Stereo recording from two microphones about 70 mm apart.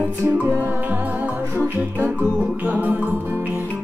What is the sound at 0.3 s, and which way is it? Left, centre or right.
Music, right.